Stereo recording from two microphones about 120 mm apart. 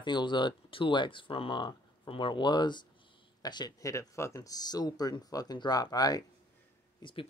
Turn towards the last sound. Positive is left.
turn(degrees=45)  # may be behind; listen again after turning